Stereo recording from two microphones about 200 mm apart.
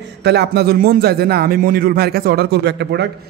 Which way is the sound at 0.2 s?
55° right (ahead or behind).